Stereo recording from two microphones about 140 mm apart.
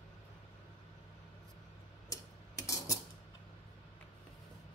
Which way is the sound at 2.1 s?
25° left (ahead or behind).